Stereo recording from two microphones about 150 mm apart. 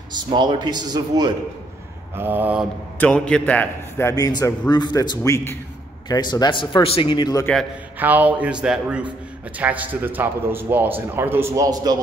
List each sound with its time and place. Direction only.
0.3 s speech: 30° right (ahead or behind)
2.1 s a man's voice: 15° right (ahead or behind)
3.0 s a man's voice: 5° left (ahead or behind)
4.1 s a man's voice: 25° left (ahead or behind)
8.0 s a man's voice: 10° right (ahead or behind)